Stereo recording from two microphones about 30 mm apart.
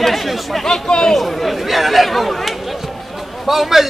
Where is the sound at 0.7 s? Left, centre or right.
Left.